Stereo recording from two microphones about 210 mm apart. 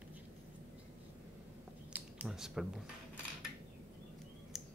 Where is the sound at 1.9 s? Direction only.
5° right (ahead or behind).